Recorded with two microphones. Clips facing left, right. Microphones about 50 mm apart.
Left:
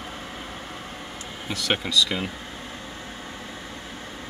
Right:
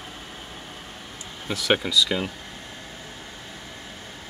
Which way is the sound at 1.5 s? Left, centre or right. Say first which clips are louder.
Right 3 dB; centre.